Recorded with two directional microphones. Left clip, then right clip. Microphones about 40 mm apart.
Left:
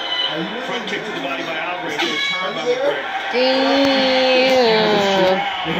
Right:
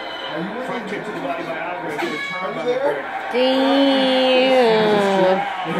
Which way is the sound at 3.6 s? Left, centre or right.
Right.